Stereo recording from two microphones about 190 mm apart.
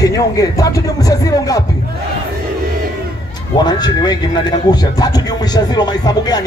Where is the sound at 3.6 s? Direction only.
20° left (ahead or behind).